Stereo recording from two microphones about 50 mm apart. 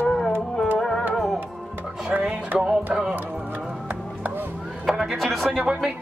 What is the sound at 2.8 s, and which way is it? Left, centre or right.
Music, right.